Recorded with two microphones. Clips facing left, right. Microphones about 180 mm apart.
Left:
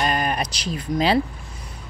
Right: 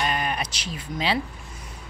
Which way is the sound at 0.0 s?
45° left (ahead or behind).